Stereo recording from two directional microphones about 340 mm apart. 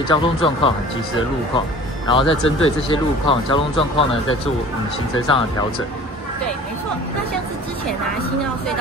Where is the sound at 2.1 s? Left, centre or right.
Centre.